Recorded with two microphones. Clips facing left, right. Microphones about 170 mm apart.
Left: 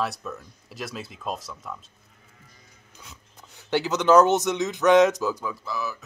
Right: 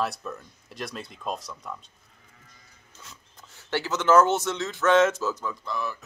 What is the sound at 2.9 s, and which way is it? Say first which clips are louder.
Speech: left 1 dB; 15° left (ahead or behind).